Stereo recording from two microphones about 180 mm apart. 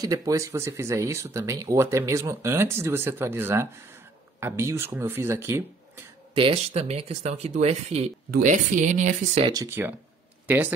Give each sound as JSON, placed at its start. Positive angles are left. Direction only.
{"t": 0.0, "sound": "speech", "side_deg": -20}
{"t": 6.3, "sound": "speech", "side_deg": -30}
{"t": 8.3, "sound": "speech", "side_deg": -50}
{"t": 9.4, "sound": "speech", "side_deg": -20}